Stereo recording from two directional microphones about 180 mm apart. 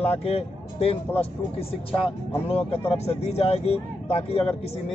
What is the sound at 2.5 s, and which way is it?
Speech, 35° left (ahead or behind).